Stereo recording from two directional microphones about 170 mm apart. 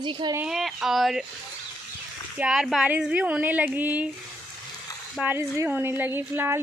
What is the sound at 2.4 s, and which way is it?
A woman's voice, 5° right (ahead or behind).